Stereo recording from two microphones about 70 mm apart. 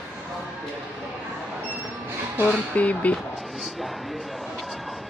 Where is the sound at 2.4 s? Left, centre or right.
Left.